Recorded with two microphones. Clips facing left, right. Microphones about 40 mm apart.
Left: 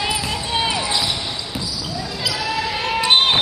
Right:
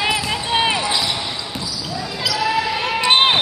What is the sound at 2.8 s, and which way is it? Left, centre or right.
Basketball bounce, centre.